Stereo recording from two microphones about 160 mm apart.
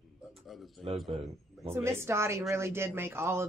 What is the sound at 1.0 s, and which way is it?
Speech, 35° right (ahead or behind).